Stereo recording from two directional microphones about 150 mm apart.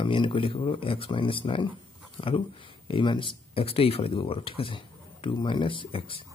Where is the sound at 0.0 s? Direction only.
35° left (ahead or behind).